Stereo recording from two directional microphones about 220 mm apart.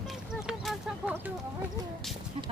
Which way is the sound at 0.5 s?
5° right (ahead or behind).